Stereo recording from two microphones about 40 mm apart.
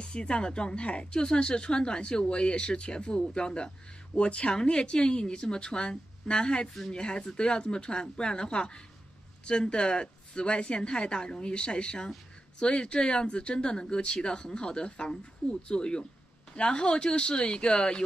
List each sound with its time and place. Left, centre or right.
0.0 s a woman's voice: left